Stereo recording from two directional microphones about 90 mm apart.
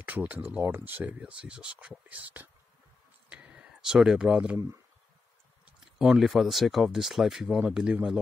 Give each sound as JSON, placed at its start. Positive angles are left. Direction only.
{"t": 0.0, "sound": "speech", "side_deg": -15}
{"t": 3.3, "sound": "a sound", "side_deg": -10}
{"t": 5.9, "sound": "speech", "side_deg": -5}